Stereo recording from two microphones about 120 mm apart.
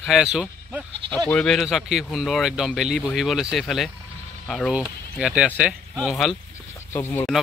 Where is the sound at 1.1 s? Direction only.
5° left (ahead or behind).